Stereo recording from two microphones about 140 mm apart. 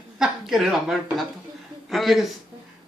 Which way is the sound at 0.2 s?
5° right (ahead or behind).